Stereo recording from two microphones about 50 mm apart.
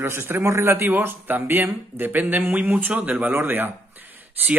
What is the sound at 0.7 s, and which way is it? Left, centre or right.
Speech, right.